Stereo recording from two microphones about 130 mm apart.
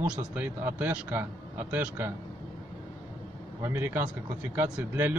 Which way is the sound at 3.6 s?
15° right (ahead or behind).